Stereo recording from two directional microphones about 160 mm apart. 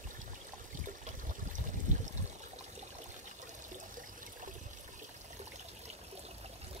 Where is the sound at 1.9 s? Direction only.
50° right (ahead or behind).